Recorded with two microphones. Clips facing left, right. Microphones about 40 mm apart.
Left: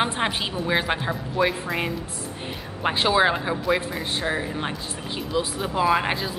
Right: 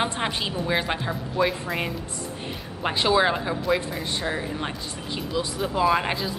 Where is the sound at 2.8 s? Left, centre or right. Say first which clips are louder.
Left 1 dB; centre.